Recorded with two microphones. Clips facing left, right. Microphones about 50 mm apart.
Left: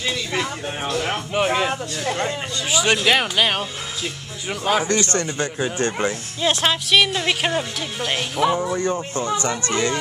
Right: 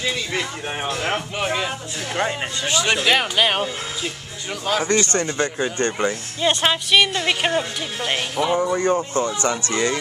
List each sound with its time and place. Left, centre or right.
0.8 s speech: centre
1.3 s speech: centre
4.5 s speech: centre
5.0 s speech: centre
8.7 s speech: centre